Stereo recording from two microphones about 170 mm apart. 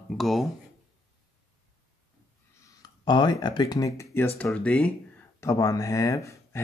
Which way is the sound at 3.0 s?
25° left (ahead or behind).